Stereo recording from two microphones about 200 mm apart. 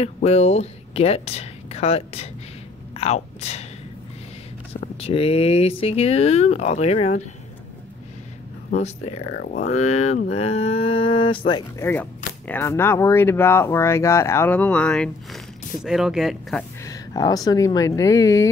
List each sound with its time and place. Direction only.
0.0 s speech: 30° left (ahead or behind)
5.0 s speech: 30° left (ahead or behind)
8.6 s speech: 35° left (ahead or behind)
9.4 s speech: 50° left (ahead or behind)
9.7 s speech: 35° left (ahead or behind)
12.4 s speech: 10° left (ahead or behind)
16.8 s speech: 20° left (ahead or behind)